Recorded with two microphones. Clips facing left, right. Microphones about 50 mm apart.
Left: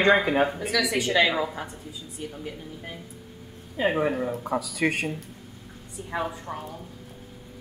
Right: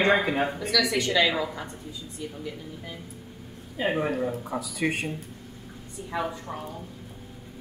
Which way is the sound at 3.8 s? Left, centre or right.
Left.